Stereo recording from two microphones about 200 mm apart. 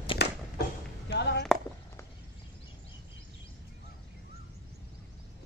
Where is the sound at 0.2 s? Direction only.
60° left (ahead or behind).